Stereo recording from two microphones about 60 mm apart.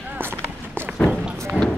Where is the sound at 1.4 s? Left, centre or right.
Centre.